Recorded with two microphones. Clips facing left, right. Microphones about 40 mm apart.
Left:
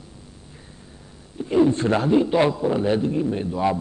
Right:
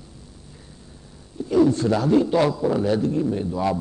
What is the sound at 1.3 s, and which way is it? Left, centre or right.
Speech, left.